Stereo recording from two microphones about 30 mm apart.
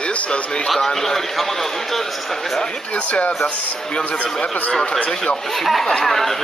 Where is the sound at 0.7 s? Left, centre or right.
Centre.